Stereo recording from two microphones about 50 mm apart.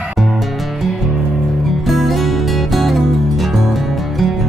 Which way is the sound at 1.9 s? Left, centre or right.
Centre.